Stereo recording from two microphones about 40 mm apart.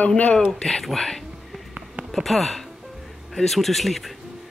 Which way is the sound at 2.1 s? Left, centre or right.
Centre.